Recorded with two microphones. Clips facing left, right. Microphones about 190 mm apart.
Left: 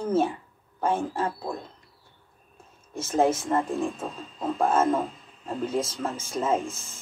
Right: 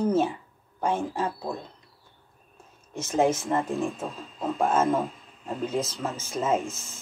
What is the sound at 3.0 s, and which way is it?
Speech, 15° right (ahead or behind).